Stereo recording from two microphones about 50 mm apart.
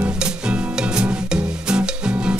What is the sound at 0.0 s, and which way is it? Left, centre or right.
Music, centre.